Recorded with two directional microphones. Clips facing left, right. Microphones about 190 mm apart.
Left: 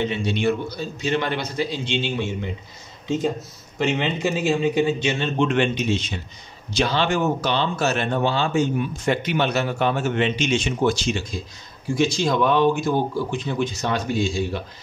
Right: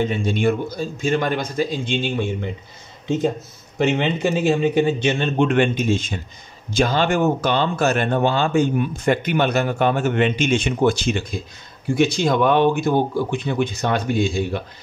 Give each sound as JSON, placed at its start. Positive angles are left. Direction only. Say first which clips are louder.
{"t": 0.0, "sound": "speech", "louder": "right 2 dB", "side_deg": -50}
{"t": 3.7, "sound": "speech", "louder": "right 3 dB", "side_deg": -55}